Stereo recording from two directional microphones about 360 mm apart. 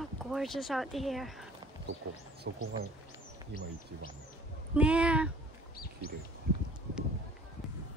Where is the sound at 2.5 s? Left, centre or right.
Right.